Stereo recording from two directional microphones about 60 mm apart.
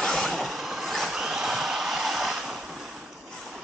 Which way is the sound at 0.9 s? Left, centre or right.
Centre.